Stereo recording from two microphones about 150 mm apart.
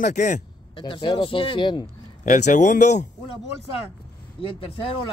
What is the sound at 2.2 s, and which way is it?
Speech, 55° left (ahead or behind).